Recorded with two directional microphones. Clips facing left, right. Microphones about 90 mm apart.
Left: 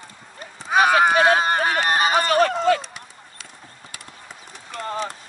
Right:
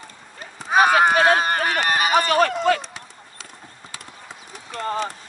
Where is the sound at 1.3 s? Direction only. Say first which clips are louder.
Left 1 dB; 20° left (ahead or behind).